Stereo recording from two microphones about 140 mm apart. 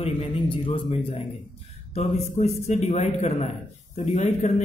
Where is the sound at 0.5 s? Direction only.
40° left (ahead or behind).